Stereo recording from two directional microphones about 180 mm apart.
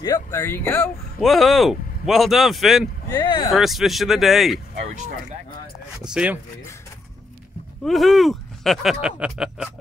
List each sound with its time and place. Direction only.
0.0 s speech: 15° left (ahead or behind)
1.2 s speech: centre (ahead or behind)
3.2 s speech: 25° left (ahead or behind)
3.5 s speech: centre (ahead or behind)
6.1 s speech: 10° right (ahead or behind)
7.8 s speech: centre (ahead or behind)